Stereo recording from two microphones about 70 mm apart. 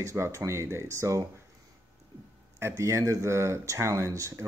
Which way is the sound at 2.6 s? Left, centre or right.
Right.